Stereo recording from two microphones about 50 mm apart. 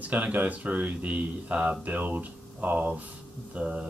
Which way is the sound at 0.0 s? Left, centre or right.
Right.